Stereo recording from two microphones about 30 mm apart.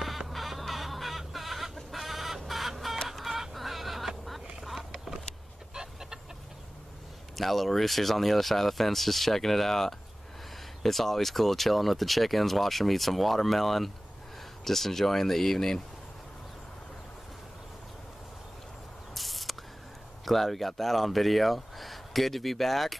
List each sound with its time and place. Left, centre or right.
0.3 s a sound: centre
1.9 s chicken: centre
4.6 s vehicle: centre
5.8 s chicken: centre
7.3 s speech: centre
19.1 s spray: centre
20.2 s speech: centre